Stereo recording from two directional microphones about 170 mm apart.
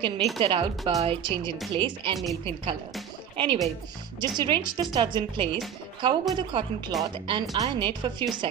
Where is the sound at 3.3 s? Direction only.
30° right (ahead or behind).